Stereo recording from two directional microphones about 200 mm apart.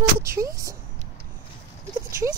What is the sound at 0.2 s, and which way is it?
Speech, 15° right (ahead or behind).